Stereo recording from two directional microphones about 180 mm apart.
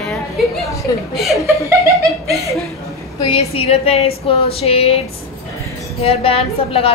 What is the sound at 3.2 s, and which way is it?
A woman's voice, 30° left (ahead or behind).